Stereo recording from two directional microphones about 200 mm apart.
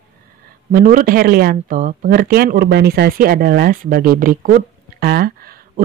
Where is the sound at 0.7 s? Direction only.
45° right (ahead or behind).